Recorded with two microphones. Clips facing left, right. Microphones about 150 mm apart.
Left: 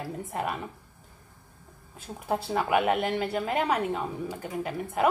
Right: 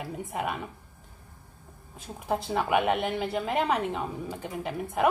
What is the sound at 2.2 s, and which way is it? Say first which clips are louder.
Speech: even; 5° left (ahead or behind).